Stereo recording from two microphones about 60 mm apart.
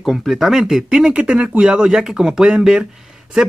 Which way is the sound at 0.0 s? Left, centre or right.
Centre.